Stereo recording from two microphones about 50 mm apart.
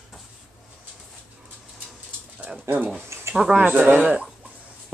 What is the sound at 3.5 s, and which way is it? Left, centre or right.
Speech, right.